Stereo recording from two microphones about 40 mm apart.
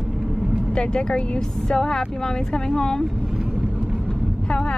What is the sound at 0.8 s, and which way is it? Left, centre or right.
A woman's voice, left.